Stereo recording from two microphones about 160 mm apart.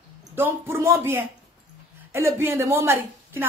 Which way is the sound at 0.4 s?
15° right (ahead or behind).